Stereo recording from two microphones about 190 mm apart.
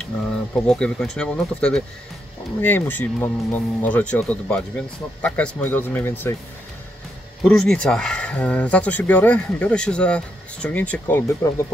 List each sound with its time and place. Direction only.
0.7 s speech: 5° left (ahead or behind)
7.4 s speech: 5° left (ahead or behind)